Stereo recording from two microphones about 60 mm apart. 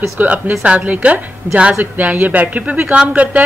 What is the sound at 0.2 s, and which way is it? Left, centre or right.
A woman's voice, right.